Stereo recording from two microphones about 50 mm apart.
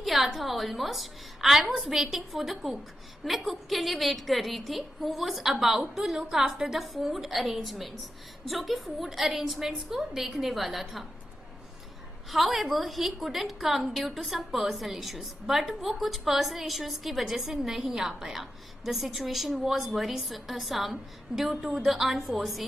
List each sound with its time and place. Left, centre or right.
0.0 s a woman's voice: centre
12.3 s a woman's voice: centre